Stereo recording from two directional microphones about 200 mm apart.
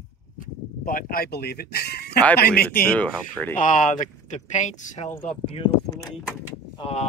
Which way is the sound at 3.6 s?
40° left (ahead or behind).